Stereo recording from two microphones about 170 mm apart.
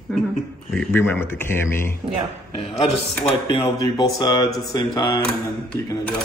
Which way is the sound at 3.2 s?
25° left (ahead or behind).